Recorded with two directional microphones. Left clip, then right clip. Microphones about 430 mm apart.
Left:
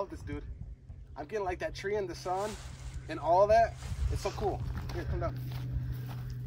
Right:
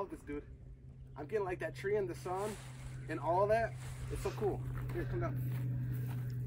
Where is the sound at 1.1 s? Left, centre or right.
Left.